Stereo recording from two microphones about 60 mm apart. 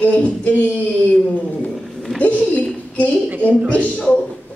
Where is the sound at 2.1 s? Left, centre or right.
Left.